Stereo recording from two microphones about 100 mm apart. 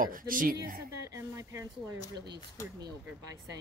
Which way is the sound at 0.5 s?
30° right (ahead or behind).